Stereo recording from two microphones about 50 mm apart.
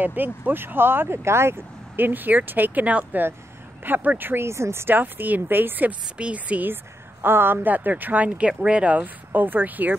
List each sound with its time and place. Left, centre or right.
0.0 s speech: right
2.0 s speech: right
4.3 s speech: right
4.8 s speech: right
6.1 s speech: right
6.7 s a woman's voice: right
7.7 s speech: right